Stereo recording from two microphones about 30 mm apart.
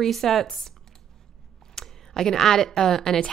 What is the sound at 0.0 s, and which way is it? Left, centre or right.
Speech, centre.